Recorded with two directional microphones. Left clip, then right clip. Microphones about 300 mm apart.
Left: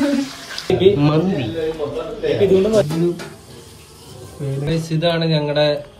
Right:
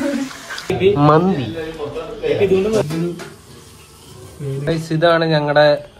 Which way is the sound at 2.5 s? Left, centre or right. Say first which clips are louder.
Left 2 dB; centre.